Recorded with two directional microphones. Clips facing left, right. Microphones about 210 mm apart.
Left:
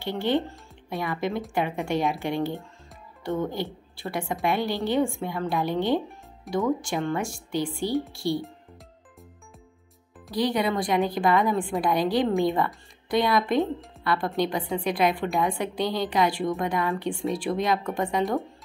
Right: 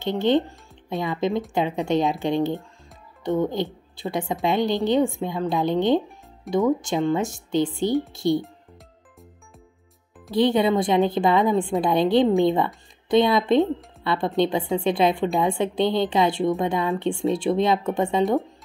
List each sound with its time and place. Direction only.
0.0 s a woman's voice: 20° right (ahead or behind)
10.3 s a woman's voice: 25° right (ahead or behind)